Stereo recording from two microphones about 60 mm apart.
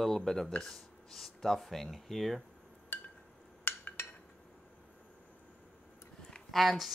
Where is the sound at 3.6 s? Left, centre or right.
Left.